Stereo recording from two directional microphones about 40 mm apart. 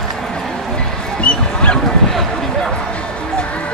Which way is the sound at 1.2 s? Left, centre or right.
Left.